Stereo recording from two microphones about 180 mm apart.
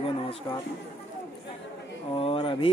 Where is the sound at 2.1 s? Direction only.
30° left (ahead or behind).